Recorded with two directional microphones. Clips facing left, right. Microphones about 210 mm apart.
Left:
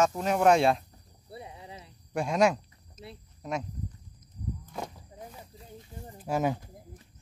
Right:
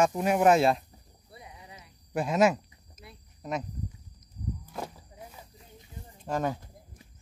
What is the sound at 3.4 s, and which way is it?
Speech, centre (ahead or behind).